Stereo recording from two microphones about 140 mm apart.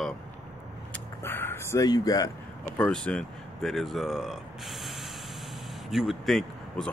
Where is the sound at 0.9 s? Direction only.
15° left (ahead or behind).